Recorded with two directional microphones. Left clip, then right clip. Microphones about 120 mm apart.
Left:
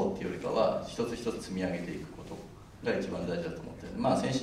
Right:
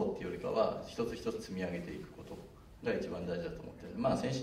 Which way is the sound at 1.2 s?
45° left (ahead or behind).